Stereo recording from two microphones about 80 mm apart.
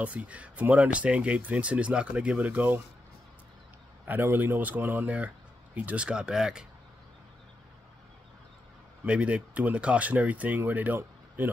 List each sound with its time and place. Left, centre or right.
0.0 s speech: centre
4.1 s speech: right; by 6.6 s centre
9.0 s speech: centre
11.0 s a sound: right